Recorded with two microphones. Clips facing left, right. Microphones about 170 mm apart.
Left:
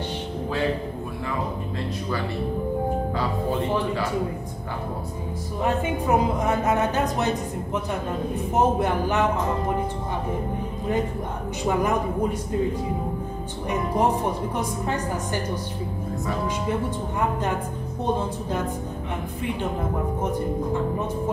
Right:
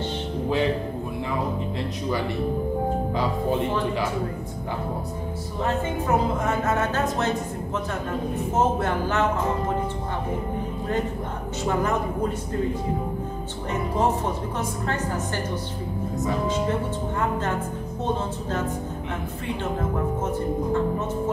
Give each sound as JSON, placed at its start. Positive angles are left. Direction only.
{"t": 5.6, "sound": "a woman's voice", "side_deg": 15}
{"t": 8.5, "sound": "a woman's voice", "side_deg": 15}
{"t": 11.6, "sound": "a woman's voice", "side_deg": 15}